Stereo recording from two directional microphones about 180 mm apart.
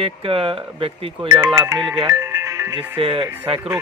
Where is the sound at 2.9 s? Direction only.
30° right (ahead or behind).